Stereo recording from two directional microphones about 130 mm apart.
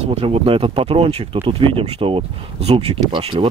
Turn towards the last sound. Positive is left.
turn(degrees=-45)  # may be behind; listen again after turning